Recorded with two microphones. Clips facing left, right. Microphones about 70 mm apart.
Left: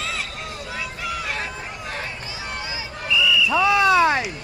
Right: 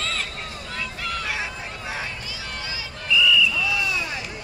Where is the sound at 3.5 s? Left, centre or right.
Left.